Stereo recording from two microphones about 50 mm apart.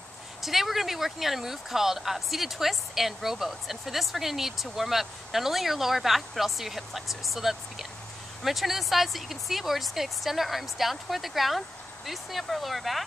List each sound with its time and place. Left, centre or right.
0.4 s speech: centre